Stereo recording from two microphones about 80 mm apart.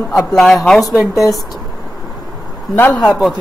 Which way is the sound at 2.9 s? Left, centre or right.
Centre.